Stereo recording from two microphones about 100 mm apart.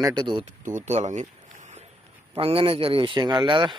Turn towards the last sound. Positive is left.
turn(degrees=-50)  # may be behind; listen again after turning